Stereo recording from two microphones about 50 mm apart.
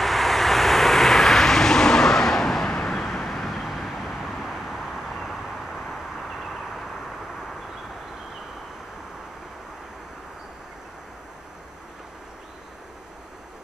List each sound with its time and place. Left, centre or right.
0.0 s vehicle: centre